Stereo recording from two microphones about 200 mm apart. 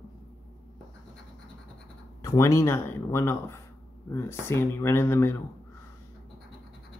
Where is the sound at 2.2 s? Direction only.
15° left (ahead or behind).